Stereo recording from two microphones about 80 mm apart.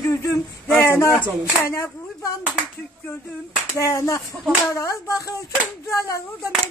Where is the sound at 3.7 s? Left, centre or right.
Left.